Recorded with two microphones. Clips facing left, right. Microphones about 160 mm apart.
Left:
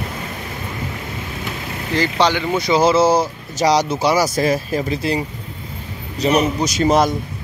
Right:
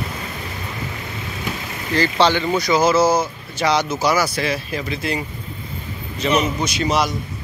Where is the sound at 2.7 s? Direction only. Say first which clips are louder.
Left 2 dB; 30° left (ahead or behind).